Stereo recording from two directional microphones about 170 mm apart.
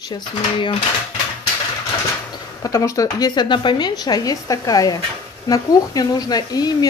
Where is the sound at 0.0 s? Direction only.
25° left (ahead or behind).